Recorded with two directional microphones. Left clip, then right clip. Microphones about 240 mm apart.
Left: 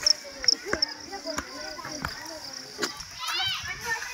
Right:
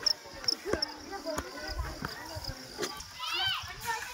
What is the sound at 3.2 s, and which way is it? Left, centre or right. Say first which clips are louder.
Children playing: left 3 dB; right.